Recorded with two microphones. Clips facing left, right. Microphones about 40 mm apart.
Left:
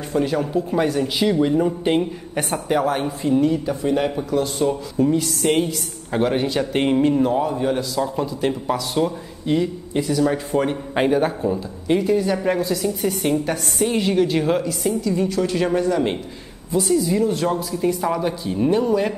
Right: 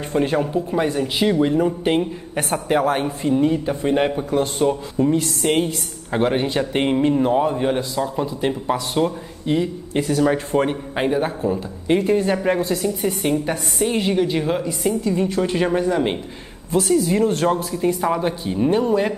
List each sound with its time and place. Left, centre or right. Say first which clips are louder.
0.1 s a man's voice: right 1 dB; right
0.8 s a woman's voice: even; centre; by 4.7 s right
5.0 s a woman's voice: even; centre
5.4 s speech: left 1 dB; centre
6.1 s a woman's voice: right 1 dB; centre
6.6 s speech: left 2 dB; centre
8.0 s speech: even; centre
9.9 s a man's voice: right 1 dB; right
10.5 s a woman's voice: right 1 dB; centre
11.0 s a man's voice: left 2 dB; centre
12.0 s a man's voice: right 1 dB; right
12.8 s speech: even; centre
15.0 s a woman's voice: even; right
16.8 s a woman's voice: right 1 dB; right